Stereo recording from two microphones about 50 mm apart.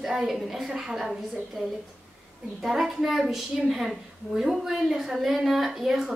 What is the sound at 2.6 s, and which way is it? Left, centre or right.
A woman's voice, centre.